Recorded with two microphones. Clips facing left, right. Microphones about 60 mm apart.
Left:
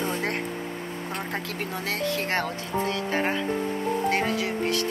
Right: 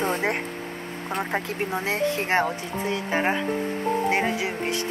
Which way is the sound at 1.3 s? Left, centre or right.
Right.